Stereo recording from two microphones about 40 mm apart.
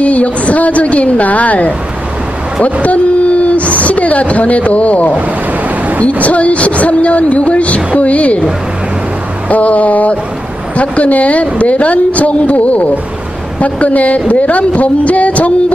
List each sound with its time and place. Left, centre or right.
0.0 s a woman's voice: left
2.6 s a sound: left
3.8 s a woman's voice: left
6.2 s speech: left
9.5 s speech: left